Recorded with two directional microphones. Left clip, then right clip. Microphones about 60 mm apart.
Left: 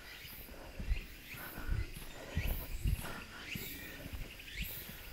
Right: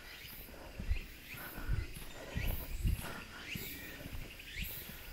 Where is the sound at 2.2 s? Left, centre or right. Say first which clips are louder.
Even; centre.